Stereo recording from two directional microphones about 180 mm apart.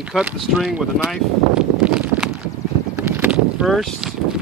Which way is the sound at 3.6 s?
Centre (ahead or behind).